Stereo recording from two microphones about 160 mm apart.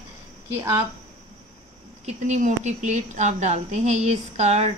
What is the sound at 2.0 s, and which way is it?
A woman's voice, 45° right (ahead or behind).